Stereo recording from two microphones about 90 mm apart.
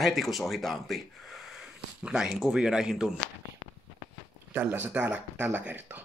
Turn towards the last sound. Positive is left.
turn(degrees=-20)  # may be behind; listen again after turning